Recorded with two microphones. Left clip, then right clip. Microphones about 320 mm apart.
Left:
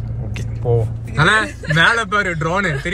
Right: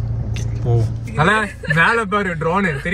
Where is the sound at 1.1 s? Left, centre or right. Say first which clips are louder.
Left 2 dB; centre.